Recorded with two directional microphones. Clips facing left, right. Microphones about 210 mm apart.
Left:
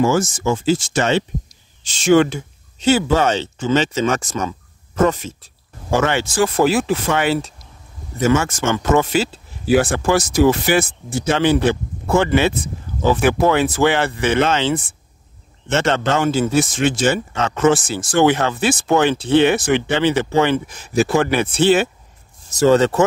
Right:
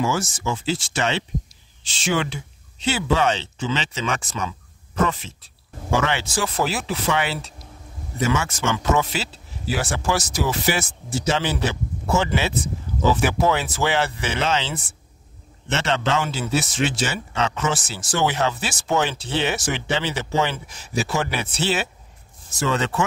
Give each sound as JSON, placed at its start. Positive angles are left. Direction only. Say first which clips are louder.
{"t": 0.0, "sound": "a man's voice", "louder": "left 7 dB", "side_deg": 45}
{"t": 22.5, "sound": "speech", "louder": "left 10 dB", "side_deg": 40}